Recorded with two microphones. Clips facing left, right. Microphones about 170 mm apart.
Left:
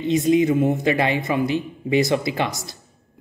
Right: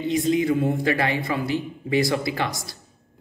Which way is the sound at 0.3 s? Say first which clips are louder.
Left 4 dB; 20° left (ahead or behind).